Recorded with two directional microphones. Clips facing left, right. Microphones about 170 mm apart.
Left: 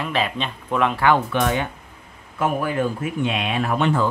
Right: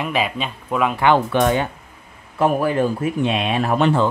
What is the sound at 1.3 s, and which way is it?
Speech, 35° right (ahead or behind).